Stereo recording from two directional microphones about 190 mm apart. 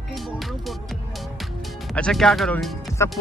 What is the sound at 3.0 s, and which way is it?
Speech, 15° left (ahead or behind).